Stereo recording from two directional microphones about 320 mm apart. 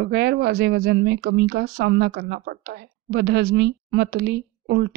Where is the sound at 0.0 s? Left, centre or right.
Right.